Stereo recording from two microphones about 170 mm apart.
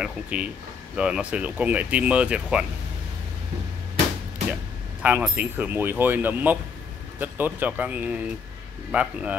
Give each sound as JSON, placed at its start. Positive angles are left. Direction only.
{"t": 0.0, "sound": "speech", "side_deg": -5}
{"t": 5.0, "sound": "speech", "side_deg": -10}